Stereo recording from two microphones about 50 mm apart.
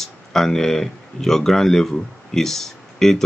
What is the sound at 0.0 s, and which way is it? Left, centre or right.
Speech, centre.